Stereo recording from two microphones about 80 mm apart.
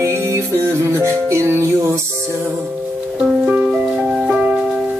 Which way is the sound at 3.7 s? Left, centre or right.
Centre.